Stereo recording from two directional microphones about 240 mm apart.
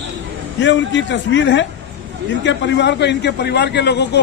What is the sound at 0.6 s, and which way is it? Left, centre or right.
A man's voice, left.